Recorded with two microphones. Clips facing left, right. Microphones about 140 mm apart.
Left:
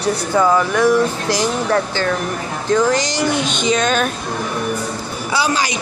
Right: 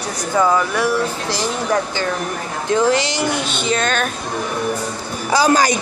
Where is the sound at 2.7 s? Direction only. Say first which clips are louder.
Even; 25° right (ahead or behind).